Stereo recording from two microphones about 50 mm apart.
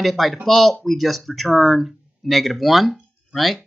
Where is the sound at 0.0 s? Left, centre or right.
Centre.